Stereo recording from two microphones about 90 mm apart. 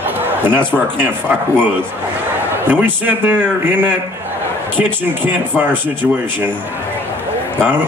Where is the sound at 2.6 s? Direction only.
20° right (ahead or behind).